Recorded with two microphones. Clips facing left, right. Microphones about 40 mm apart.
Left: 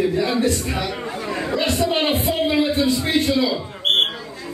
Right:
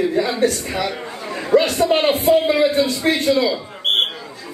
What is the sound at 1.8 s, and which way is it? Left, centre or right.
Speech, right.